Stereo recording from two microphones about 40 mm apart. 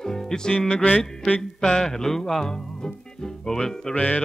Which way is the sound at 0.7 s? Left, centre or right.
Left.